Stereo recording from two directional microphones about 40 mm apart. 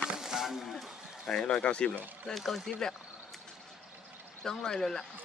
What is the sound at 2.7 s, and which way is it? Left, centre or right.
Speech, centre.